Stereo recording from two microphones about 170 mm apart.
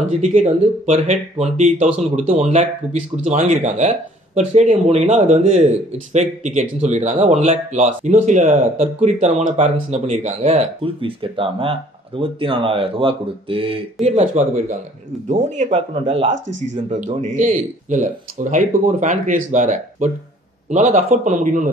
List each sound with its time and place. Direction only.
0.3 s speech: 50° right (ahead or behind)
4.4 s speech: 40° right (ahead or behind)